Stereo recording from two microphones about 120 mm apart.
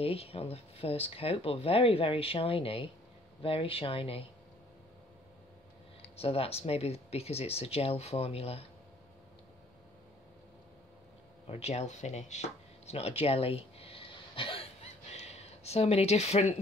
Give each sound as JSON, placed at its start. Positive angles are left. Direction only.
{"t": 0.0, "sound": "speech", "side_deg": 55}
{"t": 6.1, "sound": "speech", "side_deg": 55}
{"t": 11.4, "sound": "speech", "side_deg": 60}
{"t": 15.1, "sound": "speech", "side_deg": 60}